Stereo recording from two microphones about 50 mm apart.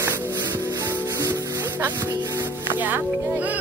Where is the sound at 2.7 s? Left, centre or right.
Right.